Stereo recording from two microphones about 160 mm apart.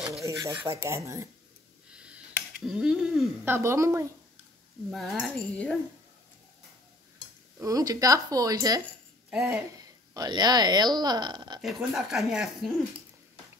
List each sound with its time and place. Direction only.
0.2 s filing: 20° right (ahead or behind)
2.0 s speech: 5° right (ahead or behind)
4.9 s speech: centre (ahead or behind)
7.6 s speech: 20° right (ahead or behind)
11.6 s speech: centre (ahead or behind)